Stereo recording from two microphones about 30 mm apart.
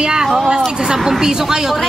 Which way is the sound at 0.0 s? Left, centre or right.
Right.